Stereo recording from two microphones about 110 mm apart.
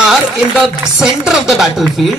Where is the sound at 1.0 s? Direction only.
5° right (ahead or behind).